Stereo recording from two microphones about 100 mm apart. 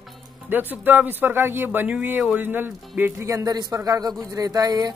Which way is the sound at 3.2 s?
35° right (ahead or behind).